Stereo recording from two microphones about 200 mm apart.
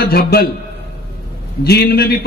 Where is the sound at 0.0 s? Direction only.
50° left (ahead or behind).